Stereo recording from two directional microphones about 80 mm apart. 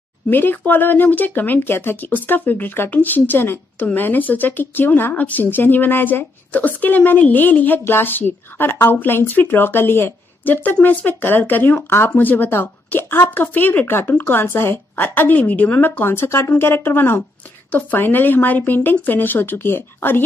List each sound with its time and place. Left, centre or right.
0.3 s speech: left